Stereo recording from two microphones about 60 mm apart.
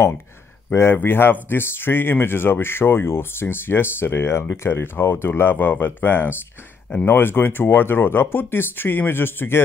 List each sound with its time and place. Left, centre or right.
0.7 s speech: left